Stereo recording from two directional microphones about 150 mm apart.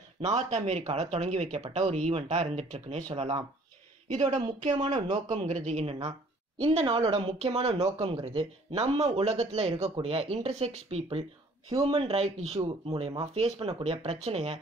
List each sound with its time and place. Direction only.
0.2 s speech: 50° right (ahead or behind)
4.1 s speech: 50° right (ahead or behind)